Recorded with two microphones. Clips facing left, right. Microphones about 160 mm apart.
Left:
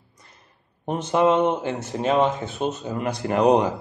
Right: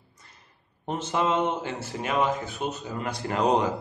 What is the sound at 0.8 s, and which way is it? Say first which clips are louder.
Speech: left 7 dB; 15° left (ahead or behind).